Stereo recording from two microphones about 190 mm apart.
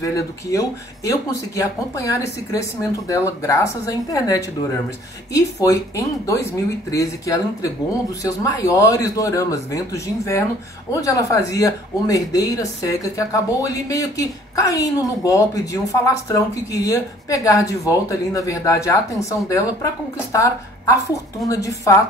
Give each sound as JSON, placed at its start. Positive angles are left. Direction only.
{"t": 0.0, "sound": "a woman's voice", "side_deg": 15}